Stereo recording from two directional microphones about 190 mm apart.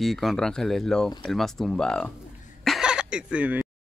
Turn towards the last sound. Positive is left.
turn(degrees=-10)  # may be behind; listen again after turning